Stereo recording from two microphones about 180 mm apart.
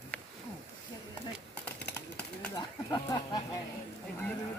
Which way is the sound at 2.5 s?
25° left (ahead or behind).